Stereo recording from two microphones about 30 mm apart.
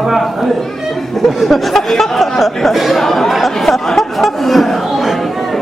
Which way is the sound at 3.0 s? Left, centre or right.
Centre.